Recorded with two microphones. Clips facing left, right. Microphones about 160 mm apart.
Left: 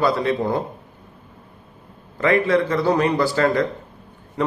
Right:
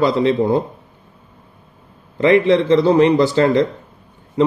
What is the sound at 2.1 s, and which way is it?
A man's voice, 20° right (ahead or behind).